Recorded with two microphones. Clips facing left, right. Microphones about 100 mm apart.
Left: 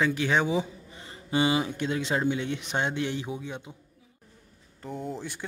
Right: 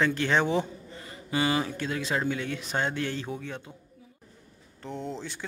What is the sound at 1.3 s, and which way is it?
Speech, 20° left (ahead or behind).